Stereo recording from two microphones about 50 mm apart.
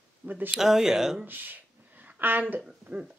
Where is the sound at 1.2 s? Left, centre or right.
Right.